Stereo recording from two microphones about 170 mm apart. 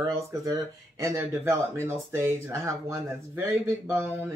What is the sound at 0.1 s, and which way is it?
Speech, 15° right (ahead or behind).